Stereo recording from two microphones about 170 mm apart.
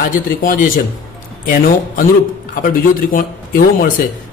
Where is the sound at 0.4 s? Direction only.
55° left (ahead or behind).